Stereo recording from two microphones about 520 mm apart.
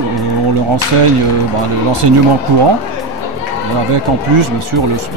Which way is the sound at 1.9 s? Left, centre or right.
Right.